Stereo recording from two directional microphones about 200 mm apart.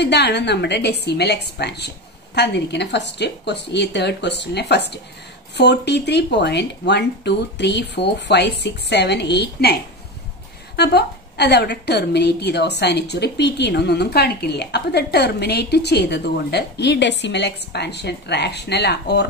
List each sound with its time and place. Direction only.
0.0 s a woman's voice: 55° left (ahead or behind)
10.8 s a woman's voice: 55° left (ahead or behind)